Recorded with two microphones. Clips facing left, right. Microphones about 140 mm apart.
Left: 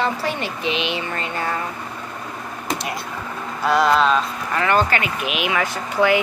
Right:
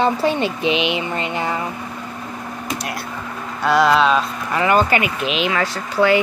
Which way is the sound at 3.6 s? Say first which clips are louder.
Right 2 dB; centre (ahead or behind).